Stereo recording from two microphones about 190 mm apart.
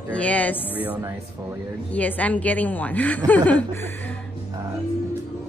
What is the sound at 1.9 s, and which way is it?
A woman's voice, 10° left (ahead or behind).